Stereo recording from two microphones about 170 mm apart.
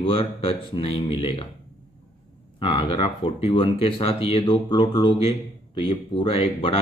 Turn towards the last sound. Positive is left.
turn(degrees=30)  # may be behind; listen again after turning